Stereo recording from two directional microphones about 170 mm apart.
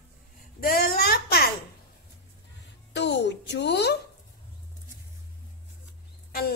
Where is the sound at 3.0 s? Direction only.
90° left.